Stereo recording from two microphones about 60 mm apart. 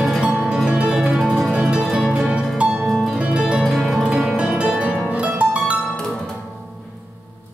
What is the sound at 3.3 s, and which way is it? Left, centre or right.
Music, centre.